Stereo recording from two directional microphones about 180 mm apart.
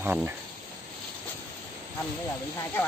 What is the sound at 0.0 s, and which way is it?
Speech, 10° right (ahead or behind).